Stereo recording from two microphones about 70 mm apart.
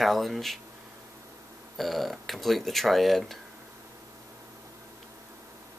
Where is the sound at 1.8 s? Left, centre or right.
Centre.